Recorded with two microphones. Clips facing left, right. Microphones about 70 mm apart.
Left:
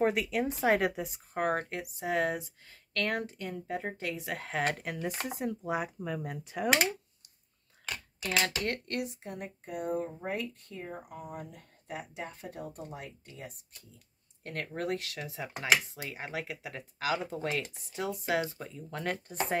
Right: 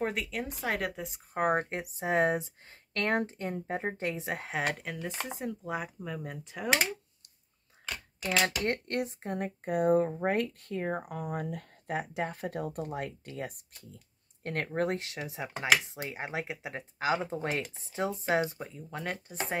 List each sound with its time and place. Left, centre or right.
0.0 s speech: centre
0.6 s speech: centre
0.9 s speech: centre
1.3 s speech: centre
4.5 s speech: centre
8.2 s speech: right
14.4 s speech: right; by 19.3 s centre